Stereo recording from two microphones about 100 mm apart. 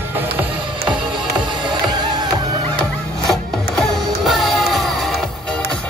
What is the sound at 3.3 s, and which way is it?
Music, centre (ahead or behind).